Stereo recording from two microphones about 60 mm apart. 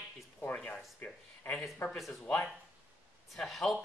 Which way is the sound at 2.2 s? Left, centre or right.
Left.